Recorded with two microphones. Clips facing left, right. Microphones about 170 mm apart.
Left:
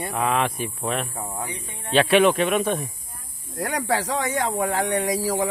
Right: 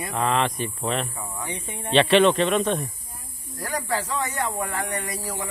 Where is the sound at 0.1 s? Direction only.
5° left (ahead or behind).